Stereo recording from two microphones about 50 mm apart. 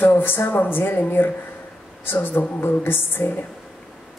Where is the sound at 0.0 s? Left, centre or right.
Left.